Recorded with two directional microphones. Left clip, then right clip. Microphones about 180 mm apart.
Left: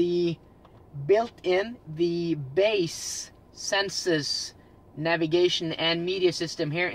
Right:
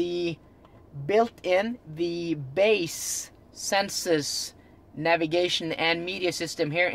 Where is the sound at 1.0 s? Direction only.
50° right (ahead or behind).